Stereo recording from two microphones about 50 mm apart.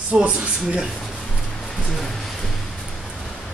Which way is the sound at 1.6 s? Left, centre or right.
Centre.